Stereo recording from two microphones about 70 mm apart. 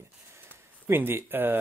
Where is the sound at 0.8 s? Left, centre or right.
Right.